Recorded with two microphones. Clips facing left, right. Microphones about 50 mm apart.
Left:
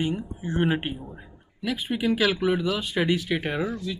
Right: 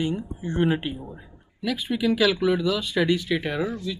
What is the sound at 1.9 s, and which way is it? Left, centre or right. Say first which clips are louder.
Speech: right 2 dB; left.